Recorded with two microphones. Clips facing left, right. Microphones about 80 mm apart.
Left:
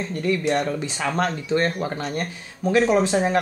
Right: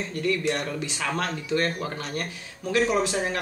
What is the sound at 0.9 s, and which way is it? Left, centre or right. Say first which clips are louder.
Speech: left 5 dB; left.